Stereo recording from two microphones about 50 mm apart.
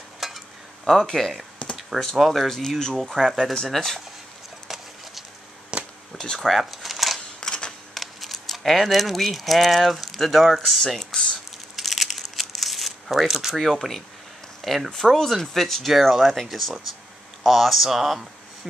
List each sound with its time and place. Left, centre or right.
0.2 s a sound: centre
0.8 s speech: centre
3.3 s speech: centre
5.7 s a sound: centre
6.1 s speech: centre
6.5 s a sound: centre
7.3 s camera: centre
7.9 s speech: centre
11.7 s crumpling: centre
13.6 s speech: centre